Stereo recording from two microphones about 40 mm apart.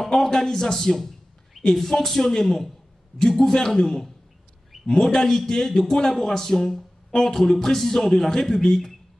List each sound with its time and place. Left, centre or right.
0.0 s a man's voice: centre